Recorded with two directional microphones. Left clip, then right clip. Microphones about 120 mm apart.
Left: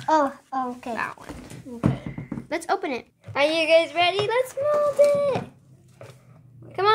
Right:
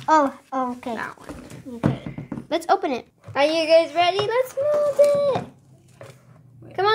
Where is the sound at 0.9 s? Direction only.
35° left (ahead or behind).